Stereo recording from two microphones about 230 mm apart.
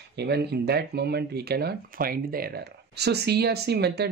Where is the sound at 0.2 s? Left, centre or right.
Right.